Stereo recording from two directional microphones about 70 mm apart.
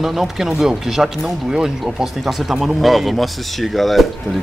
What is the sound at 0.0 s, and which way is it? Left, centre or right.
Speech, centre.